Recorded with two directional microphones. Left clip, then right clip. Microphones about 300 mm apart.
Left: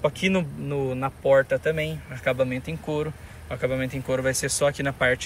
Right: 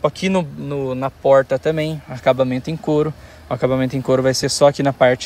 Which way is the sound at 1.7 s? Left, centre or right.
Right.